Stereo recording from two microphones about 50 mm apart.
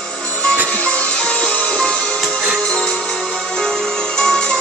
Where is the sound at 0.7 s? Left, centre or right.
Left.